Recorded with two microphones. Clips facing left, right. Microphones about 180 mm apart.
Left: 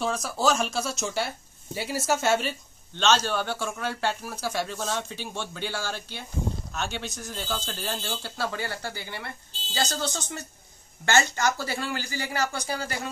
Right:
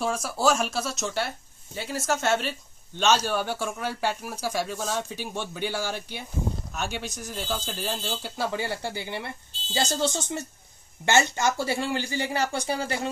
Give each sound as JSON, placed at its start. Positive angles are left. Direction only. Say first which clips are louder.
{"t": 0.0, "sound": "speech", "louder": "right 1 dB", "side_deg": -5}
{"t": 3.0, "sound": "speech", "louder": "right 1 dB", "side_deg": -10}